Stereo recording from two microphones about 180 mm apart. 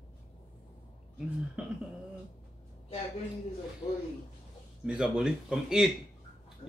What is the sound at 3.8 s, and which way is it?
Speech, 20° left (ahead or behind).